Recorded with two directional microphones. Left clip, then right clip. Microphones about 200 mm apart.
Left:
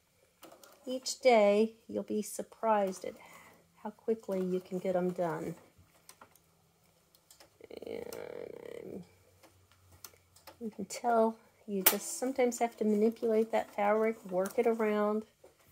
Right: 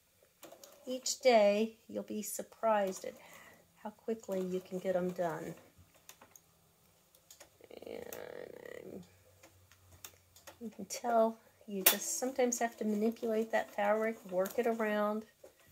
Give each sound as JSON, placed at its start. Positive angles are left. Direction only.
{"t": 0.6, "sound": "speech", "side_deg": 40}
{"t": 7.6, "sound": "a sound", "side_deg": 45}
{"t": 10.9, "sound": "speech", "side_deg": 45}